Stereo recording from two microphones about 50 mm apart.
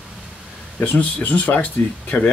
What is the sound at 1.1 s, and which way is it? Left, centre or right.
Speech, left.